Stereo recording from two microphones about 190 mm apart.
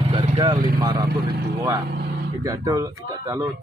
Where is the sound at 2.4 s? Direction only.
20° right (ahead or behind).